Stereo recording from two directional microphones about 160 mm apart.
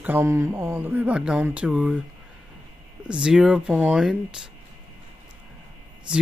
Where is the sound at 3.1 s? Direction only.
5° right (ahead or behind).